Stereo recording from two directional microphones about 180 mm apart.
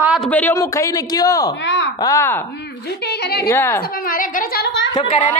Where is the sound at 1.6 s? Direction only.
75° left (ahead or behind).